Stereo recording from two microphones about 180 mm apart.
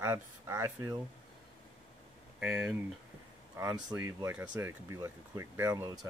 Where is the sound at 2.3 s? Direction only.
5° right (ahead or behind).